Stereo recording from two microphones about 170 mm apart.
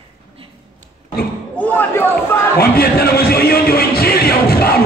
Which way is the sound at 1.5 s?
10° left (ahead or behind).